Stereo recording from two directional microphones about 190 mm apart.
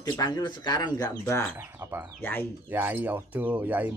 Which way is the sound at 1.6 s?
10° right (ahead or behind).